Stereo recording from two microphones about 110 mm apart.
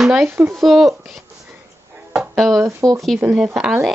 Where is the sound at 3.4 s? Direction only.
5° right (ahead or behind).